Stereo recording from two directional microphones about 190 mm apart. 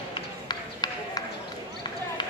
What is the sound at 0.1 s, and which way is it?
Run, 20° left (ahead or behind).